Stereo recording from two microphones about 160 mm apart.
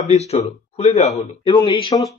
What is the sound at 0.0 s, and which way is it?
Speech, 40° left (ahead or behind).